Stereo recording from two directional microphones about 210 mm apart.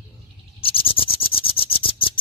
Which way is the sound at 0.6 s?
25° left (ahead or behind).